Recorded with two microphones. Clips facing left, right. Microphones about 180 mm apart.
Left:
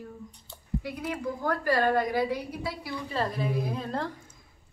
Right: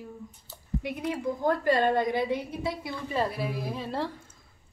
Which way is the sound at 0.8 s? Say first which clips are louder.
Right 4 dB; 20° right (ahead or behind).